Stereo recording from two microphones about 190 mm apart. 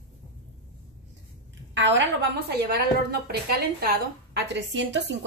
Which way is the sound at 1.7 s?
65° right (ahead or behind).